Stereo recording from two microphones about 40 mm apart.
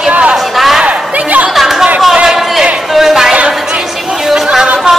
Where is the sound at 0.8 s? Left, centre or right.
Right.